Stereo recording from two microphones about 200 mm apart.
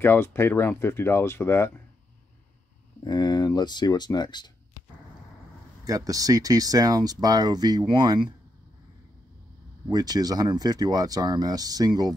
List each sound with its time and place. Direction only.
0.0 s speech: 10° left (ahead or behind)
3.0 s speech: 20° left (ahead or behind)
5.9 s speech: 15° right (ahead or behind)
9.8 s speech: 20° right (ahead or behind)